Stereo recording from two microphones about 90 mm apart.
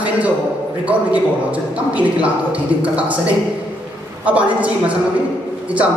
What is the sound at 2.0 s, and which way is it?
Speech, 15° right (ahead or behind).